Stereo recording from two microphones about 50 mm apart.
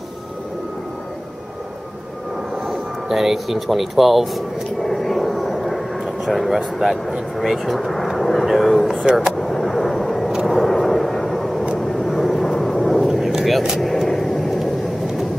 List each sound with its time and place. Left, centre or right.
3.1 s speech: centre
9.1 s speech: centre
9.4 s vehicle: centre
13.7 s vehicle: centre